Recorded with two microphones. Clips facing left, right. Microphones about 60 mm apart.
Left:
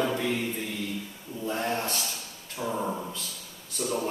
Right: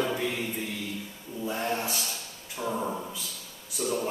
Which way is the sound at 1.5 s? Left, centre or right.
Centre.